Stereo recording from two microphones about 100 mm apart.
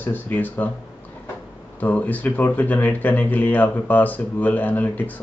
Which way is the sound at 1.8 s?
15° left (ahead or behind).